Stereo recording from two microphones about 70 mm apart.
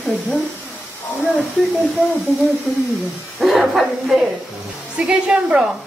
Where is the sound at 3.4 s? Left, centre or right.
Centre.